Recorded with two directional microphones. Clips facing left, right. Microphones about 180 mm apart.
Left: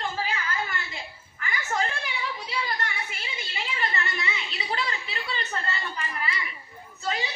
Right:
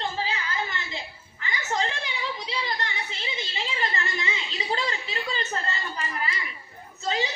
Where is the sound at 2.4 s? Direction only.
20° right (ahead or behind).